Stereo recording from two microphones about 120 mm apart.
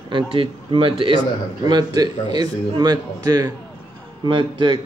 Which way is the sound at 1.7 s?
35° right (ahead or behind).